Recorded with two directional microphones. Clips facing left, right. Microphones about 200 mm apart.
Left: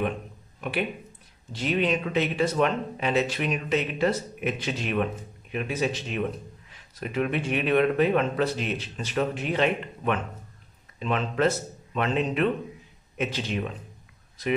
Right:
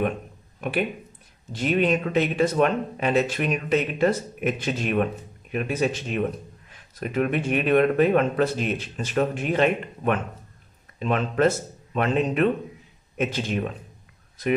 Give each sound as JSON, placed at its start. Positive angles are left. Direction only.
{"t": 0.6, "sound": "speech", "side_deg": -50}